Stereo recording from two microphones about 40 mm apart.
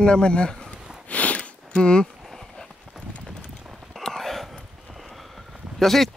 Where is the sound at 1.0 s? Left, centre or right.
Left.